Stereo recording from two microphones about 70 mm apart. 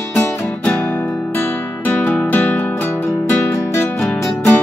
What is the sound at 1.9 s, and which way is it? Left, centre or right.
Music, left.